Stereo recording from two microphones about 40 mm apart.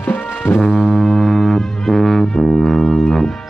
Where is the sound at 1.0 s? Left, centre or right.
Centre.